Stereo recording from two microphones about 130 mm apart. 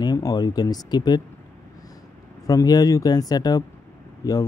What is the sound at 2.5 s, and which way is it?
Speech, 30° left (ahead or behind).